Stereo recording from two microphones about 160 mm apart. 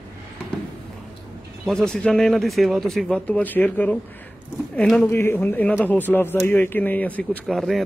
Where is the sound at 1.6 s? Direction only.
5° left (ahead or behind).